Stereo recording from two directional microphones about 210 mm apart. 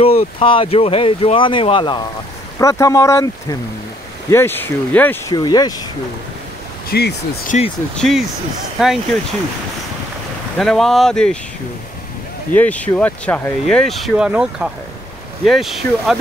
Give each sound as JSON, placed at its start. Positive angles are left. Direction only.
{"t": 0.0, "sound": "speech", "side_deg": 25}
{"t": 5.3, "sound": "speech", "side_deg": 20}
{"t": 6.9, "sound": "speech", "side_deg": 50}
{"t": 7.9, "sound": "speech", "side_deg": 0}
{"t": 10.6, "sound": "speech", "side_deg": 0}
{"t": 12.5, "sound": "speech", "side_deg": 5}